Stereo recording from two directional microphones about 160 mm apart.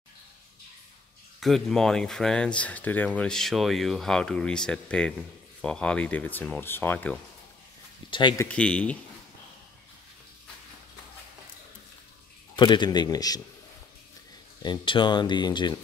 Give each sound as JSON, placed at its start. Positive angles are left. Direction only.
{"t": 1.4, "sound": "speech", "side_deg": 0}
{"t": 8.1, "sound": "speech", "side_deg": 30}
{"t": 8.5, "sound": "speech", "side_deg": 5}
{"t": 12.5, "sound": "speech", "side_deg": 30}
{"t": 14.6, "sound": "speech", "side_deg": 30}